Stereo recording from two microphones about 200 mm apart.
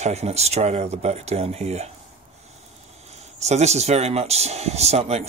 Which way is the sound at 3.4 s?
35° right (ahead or behind).